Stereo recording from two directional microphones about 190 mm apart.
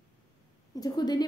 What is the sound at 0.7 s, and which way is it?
Speech, 20° left (ahead or behind).